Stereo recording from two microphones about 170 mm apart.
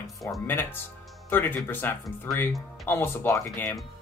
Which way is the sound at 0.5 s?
10° left (ahead or behind).